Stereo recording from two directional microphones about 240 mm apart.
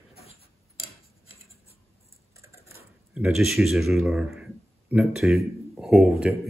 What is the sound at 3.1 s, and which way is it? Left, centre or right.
Speech, centre.